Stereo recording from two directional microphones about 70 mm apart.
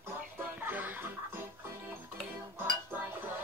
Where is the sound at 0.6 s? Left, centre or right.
Right.